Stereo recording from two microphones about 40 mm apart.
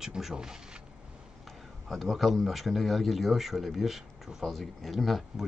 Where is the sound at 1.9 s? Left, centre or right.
Centre.